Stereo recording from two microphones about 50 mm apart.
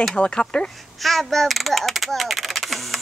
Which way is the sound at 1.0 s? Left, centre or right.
Centre.